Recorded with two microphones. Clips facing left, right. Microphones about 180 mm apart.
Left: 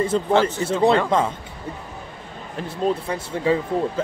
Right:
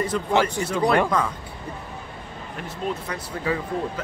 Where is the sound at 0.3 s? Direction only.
15° right (ahead or behind).